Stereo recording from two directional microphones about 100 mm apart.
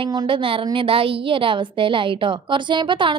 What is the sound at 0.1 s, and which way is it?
A woman's voice, 60° right (ahead or behind).